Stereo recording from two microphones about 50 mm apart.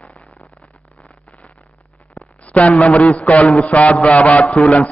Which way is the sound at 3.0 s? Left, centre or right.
Left.